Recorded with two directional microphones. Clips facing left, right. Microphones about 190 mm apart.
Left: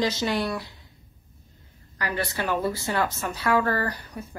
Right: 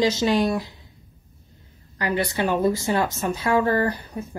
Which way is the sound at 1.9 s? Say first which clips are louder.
Right 5 dB; 25° right (ahead or behind).